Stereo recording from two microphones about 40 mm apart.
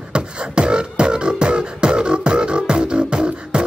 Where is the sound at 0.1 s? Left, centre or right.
Right.